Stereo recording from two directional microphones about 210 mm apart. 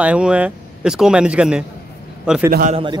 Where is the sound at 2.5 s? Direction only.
40° right (ahead or behind).